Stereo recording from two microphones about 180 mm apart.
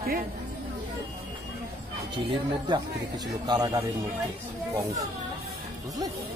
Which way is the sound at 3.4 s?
20° right (ahead or behind).